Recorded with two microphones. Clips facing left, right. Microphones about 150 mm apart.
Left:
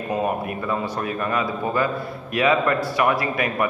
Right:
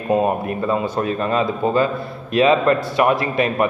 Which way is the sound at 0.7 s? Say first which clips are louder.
Right 6 dB; 25° right (ahead or behind).